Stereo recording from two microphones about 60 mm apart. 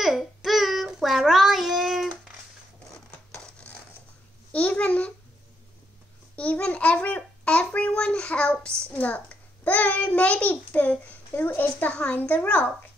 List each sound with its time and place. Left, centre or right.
0.0 s child singing: centre
4.5 s babbling: left
6.3 s a sound: left
8.9 s a child's voice: left
9.7 s child singing: left
11.9 s a child's voice: left